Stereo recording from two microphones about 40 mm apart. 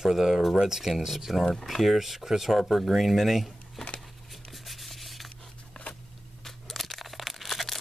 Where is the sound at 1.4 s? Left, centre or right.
Centre.